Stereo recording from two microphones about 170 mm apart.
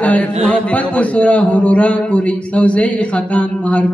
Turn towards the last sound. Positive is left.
turn(degrees=5)  # may be behind; listen again after turning